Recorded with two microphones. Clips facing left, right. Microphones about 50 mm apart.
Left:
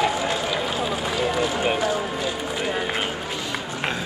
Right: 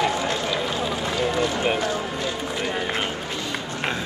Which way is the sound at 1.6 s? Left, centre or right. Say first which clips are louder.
Left 1 dB; centre.